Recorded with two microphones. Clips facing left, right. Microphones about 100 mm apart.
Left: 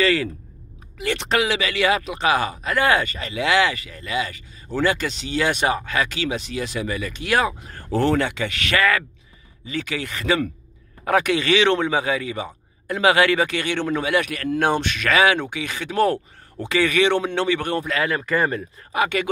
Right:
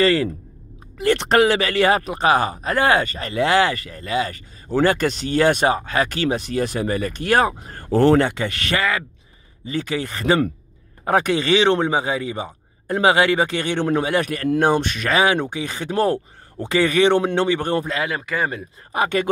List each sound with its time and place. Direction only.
0.0 s speech: 35° right (ahead or behind)
0.9 s speech: 50° right (ahead or behind)
4.7 s speech: 50° right (ahead or behind); by 6.0 s 30° right (ahead or behind)
6.0 s speech: 45° right (ahead or behind)
8.7 s speech: 20° right (ahead or behind)
9.7 s speech: 35° right (ahead or behind)
18.0 s speech: 10° right (ahead or behind)
18.9 s speech: 35° right (ahead or behind)